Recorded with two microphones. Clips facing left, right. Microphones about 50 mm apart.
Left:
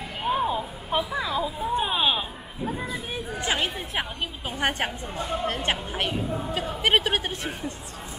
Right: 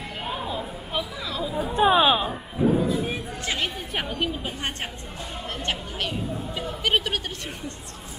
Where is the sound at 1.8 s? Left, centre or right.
Centre.